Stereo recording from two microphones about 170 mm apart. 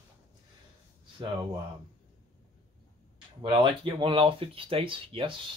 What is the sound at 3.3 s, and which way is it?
Speech, 30° right (ahead or behind).